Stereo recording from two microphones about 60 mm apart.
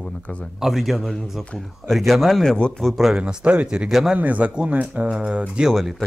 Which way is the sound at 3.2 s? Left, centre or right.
Centre.